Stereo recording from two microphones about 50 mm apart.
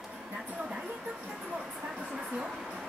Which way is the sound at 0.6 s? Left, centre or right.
Centre.